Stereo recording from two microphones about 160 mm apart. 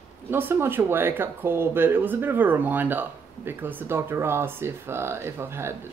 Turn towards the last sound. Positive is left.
turn(degrees=-15)  # may be behind; listen again after turning